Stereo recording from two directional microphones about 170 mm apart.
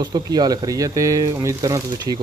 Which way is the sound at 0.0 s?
25° right (ahead or behind).